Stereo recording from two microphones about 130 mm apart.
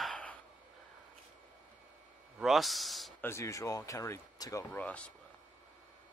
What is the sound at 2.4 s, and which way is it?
Speech, centre (ahead or behind).